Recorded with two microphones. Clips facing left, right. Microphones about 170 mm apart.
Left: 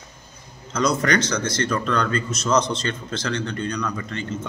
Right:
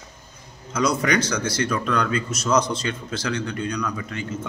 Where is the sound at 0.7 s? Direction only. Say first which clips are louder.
Left 1 dB; 10° right (ahead or behind).